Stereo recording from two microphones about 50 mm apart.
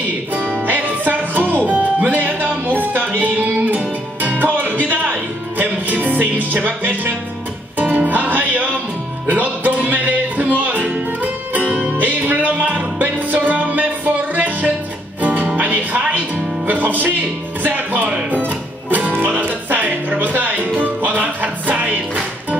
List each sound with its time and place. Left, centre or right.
0.7 s music: right
1.7 s music: right